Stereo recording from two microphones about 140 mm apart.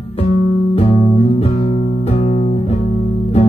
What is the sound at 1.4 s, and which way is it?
Music, 50° left (ahead or behind).